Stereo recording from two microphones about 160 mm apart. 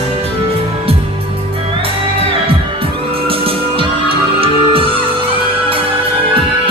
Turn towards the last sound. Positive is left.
turn(degrees=-35)  # may be behind; listen again after turning